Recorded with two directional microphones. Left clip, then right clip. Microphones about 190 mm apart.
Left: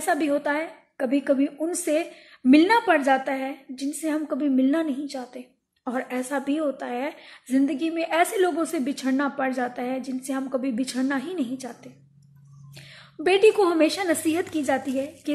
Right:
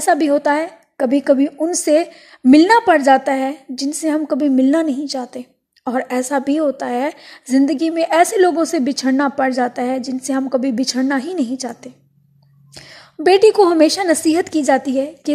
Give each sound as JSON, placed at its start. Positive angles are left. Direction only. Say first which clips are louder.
{"t": 0.0, "sound": "a woman's voice", "louder": "right 9 dB", "side_deg": -40}